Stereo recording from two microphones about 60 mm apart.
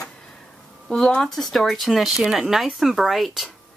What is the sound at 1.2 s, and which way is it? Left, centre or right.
Speech, centre.